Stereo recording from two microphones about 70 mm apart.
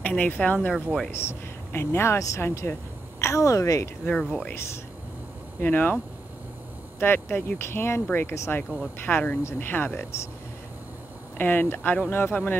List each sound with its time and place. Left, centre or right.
0.0 s speech: left
1.1 s a woman's voice: left
4.0 s speech: centre
5.6 s speech: left
7.0 s speech: left
9.4 s speech: left
9.7 s speech: left
11.3 s speech: left